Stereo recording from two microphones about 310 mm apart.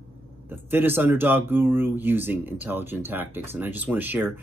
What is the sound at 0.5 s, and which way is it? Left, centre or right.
Speech, centre.